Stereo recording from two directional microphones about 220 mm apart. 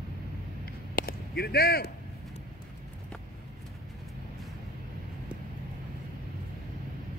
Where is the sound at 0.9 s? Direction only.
45° left (ahead or behind).